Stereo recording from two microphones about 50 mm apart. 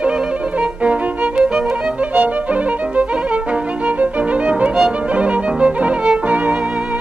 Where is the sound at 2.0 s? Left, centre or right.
Right.